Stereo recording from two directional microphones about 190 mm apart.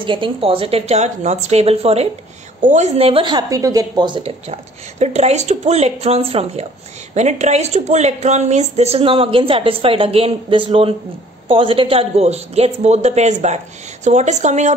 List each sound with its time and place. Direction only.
0.0 s a woman's voice: 25° right (ahead or behind)